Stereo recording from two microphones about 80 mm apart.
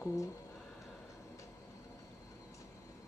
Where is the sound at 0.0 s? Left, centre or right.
Left.